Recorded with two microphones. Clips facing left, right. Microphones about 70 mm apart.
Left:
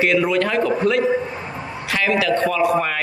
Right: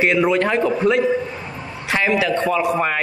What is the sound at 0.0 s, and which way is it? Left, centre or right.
A man's voice, right.